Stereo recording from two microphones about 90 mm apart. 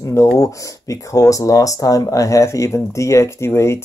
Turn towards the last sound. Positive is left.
turn(degrees=30)  # may be behind; listen again after turning